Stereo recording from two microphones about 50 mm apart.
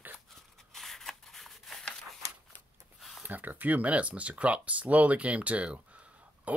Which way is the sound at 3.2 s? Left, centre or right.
Right.